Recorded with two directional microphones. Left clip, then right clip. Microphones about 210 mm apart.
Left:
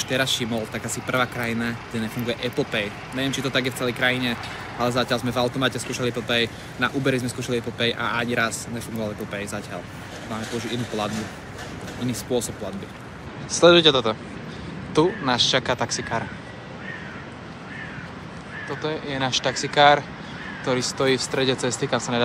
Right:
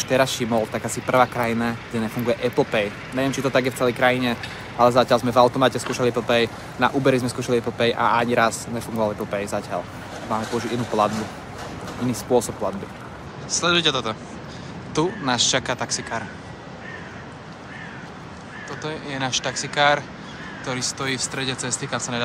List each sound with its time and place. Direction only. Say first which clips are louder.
0.0 s speech: right 3 dB; centre (ahead or behind); by 16.3 s 15° right (ahead or behind)
18.7 s speech: left 2 dB; 15° right (ahead or behind)